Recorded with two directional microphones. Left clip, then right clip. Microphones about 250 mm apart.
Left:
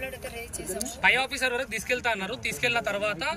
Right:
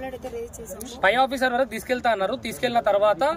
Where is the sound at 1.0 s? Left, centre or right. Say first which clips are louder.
Right 4 dB; right.